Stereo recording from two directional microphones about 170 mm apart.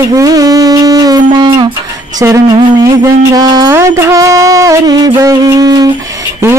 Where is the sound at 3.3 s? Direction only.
25° right (ahead or behind).